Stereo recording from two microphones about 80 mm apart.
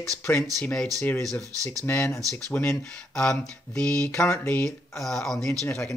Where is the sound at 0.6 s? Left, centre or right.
Centre.